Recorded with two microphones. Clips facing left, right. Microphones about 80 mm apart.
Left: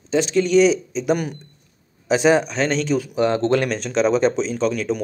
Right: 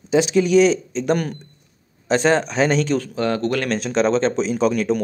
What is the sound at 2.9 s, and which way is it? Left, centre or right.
Speech, centre.